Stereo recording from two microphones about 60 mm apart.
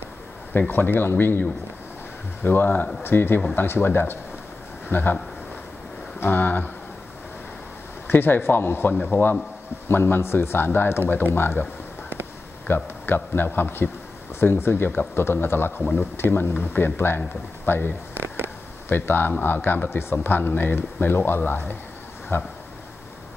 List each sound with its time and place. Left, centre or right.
0.5 s speech: left
2.4 s speech: left
6.1 s speech: left
8.1 s speech: left
12.6 s speech: left
18.4 s a sound: left
19.3 s speech: left